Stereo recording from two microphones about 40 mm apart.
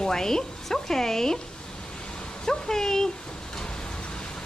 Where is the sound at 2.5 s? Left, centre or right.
Centre.